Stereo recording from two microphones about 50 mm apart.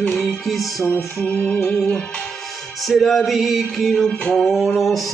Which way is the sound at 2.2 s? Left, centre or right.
Centre.